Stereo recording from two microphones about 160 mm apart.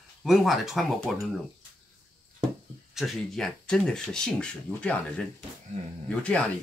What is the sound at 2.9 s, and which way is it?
Speech, centre (ahead or behind).